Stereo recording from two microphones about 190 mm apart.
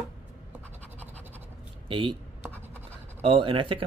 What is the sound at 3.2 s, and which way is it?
Rub, 30° right (ahead or behind).